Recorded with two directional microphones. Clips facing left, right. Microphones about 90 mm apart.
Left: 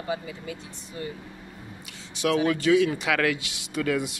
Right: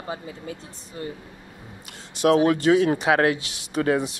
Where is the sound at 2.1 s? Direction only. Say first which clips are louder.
Right 5 dB; 40° right (ahead or behind).